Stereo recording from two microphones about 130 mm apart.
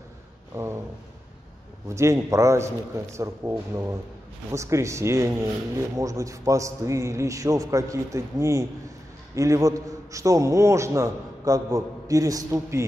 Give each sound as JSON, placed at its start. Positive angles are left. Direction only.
{"t": 0.5, "sound": "a man's voice", "side_deg": -20}
{"t": 1.9, "sound": "a man's voice", "side_deg": -20}